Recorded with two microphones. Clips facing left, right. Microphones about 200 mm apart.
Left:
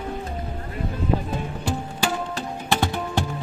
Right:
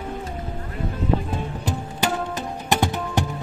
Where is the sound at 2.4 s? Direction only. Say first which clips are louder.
Right 1 dB; 20° right (ahead or behind).